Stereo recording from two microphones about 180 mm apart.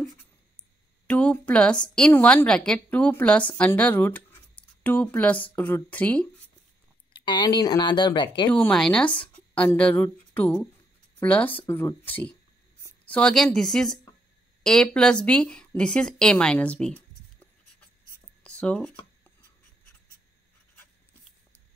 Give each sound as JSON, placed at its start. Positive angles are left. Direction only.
{"t": 1.0, "sound": "a woman's voice", "side_deg": 10}
{"t": 7.2, "sound": "speech", "side_deg": 25}
{"t": 8.5, "sound": "a woman's voice", "side_deg": 5}
{"t": 18.4, "sound": "a sound", "side_deg": 5}